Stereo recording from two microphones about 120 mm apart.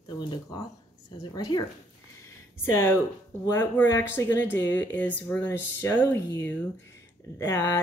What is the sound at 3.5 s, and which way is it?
Speech, 20° left (ahead or behind).